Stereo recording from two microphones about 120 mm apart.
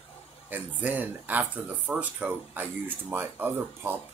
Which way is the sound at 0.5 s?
15° right (ahead or behind).